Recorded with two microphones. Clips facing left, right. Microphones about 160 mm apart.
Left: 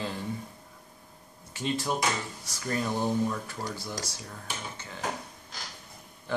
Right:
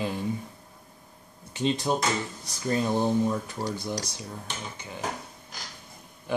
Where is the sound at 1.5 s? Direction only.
20° right (ahead or behind).